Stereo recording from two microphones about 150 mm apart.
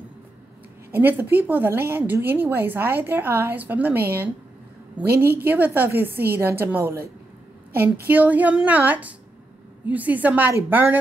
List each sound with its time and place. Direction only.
0.9 s a woman's voice: 10° right (ahead or behind)
5.0 s a woman's voice: 90° right
5.4 s a woman's voice: 10° right (ahead or behind)